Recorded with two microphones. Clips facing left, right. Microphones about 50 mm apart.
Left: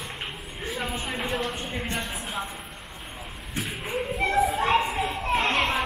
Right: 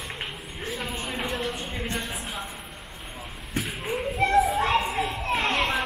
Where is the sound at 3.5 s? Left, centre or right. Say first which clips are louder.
Right 1 dB; centre.